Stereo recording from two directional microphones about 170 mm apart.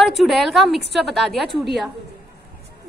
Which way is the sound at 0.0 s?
Centre (ahead or behind).